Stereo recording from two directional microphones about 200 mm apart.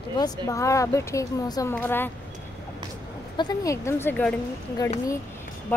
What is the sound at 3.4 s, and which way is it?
Speech, 20° left (ahead or behind).